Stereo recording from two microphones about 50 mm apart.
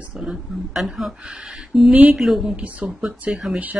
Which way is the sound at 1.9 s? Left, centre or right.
Right.